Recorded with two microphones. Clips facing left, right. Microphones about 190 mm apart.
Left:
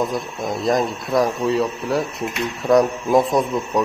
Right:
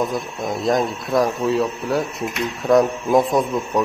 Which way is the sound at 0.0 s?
Centre (ahead or behind).